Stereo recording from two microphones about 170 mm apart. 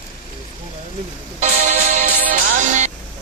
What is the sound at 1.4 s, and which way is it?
Music, 50° right (ahead or behind).